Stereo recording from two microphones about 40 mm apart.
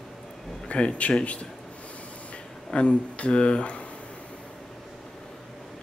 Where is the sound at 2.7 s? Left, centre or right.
Left.